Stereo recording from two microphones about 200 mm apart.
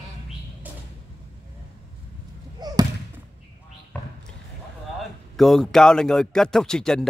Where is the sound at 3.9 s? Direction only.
10° left (ahead or behind).